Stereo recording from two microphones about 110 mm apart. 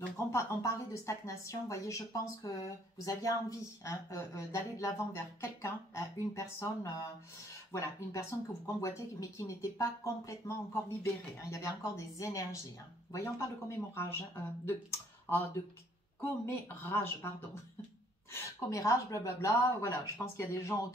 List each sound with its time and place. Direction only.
0.3 s speech: 25° left (ahead or behind)
16.2 s speech: 25° left (ahead or behind)